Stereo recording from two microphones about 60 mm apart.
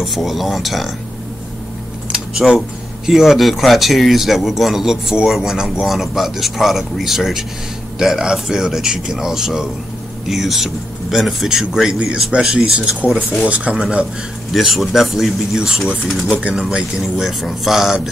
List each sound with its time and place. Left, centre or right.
0.0 s speech: centre
2.3 s speech: centre
14.5 s speech: centre